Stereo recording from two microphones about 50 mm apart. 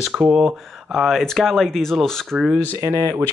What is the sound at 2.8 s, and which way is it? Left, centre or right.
Speech, right.